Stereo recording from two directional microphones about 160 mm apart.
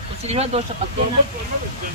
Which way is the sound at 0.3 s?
40° right (ahead or behind).